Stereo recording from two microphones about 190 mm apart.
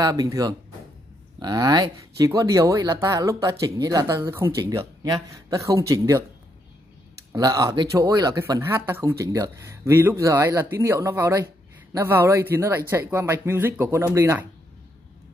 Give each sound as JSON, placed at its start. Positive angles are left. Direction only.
{"t": 0.0, "sound": "speech", "side_deg": -20}
{"t": 7.3, "sound": "speech", "side_deg": -20}